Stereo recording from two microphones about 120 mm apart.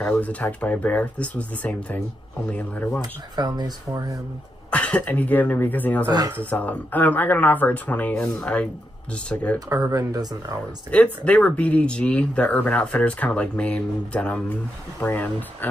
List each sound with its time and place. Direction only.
0.0 s speech: 10° left (ahead or behind)
3.0 s speech: 35° right (ahead or behind)
4.6 s speech: 10° left (ahead or behind)
9.7 s speech: 30° right (ahead or behind)
10.9 s speech: 10° left (ahead or behind)